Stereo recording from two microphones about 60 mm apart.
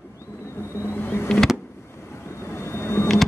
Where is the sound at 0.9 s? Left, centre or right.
Left.